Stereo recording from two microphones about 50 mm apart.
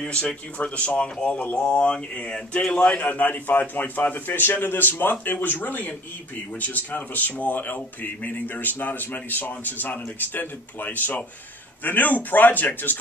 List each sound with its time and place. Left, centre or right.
0.0 s speech: left